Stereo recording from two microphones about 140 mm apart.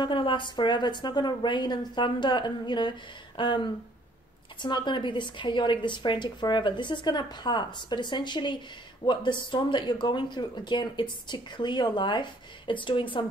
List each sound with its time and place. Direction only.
0.0 s speech: 35° left (ahead or behind)